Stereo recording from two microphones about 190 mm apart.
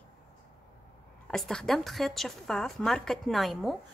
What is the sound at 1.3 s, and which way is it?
A woman's voice, centre (ahead or behind).